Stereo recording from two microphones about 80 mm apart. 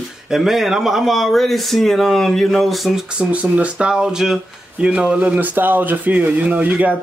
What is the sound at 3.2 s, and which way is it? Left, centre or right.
Speech, centre.